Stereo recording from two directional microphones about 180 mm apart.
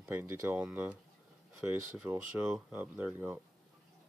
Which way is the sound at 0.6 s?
5° right (ahead or behind).